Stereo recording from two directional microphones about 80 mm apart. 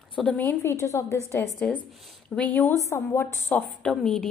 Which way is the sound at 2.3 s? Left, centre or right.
Centre.